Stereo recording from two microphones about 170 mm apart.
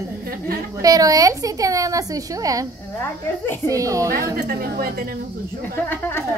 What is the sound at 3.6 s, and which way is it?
Speech, 20° right (ahead or behind).